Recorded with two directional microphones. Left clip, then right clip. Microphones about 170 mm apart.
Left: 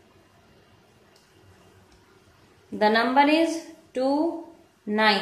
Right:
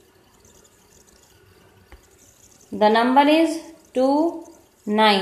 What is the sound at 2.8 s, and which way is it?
Speech, 30° right (ahead or behind).